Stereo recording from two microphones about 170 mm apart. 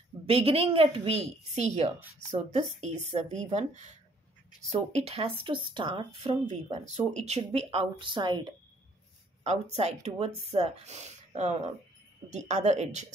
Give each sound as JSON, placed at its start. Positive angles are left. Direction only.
{"t": 0.3, "sound": "speech", "side_deg": -35}
{"t": 6.4, "sound": "speech", "side_deg": -40}
{"t": 9.4, "sound": "speech", "side_deg": -40}